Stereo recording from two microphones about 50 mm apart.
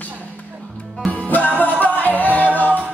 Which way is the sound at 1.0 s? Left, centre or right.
Left.